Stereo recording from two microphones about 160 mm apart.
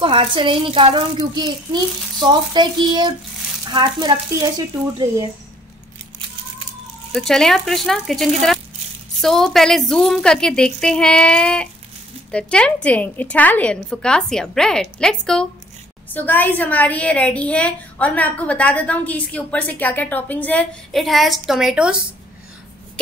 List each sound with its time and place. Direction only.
0.0 s a child's voice: 30° right (ahead or behind)
7.1 s a woman's voice: 5° left (ahead or behind)